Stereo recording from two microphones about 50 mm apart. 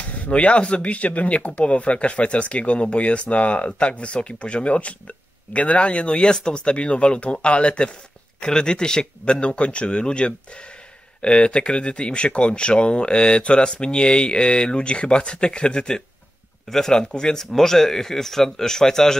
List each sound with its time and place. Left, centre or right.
0.0 s speech: left; by 19.1 s centre